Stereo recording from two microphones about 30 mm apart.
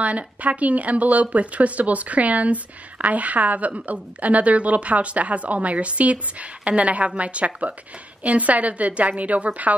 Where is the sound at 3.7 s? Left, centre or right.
Right.